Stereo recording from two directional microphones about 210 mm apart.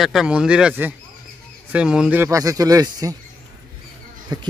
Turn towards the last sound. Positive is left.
turn(degrees=-20)  # may be behind; listen again after turning